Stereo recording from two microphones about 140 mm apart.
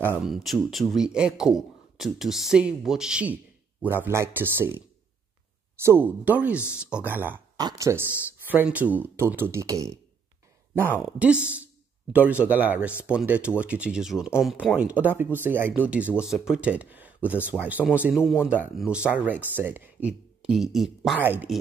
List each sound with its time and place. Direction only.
0.0 s speech: 15° right (ahead or behind)
0.3 s a man's voice: centre (ahead or behind)
7.5 s speech: 25° right (ahead or behind)
11.0 s speech: 10° right (ahead or behind)
21.2 s speech: 15° right (ahead or behind)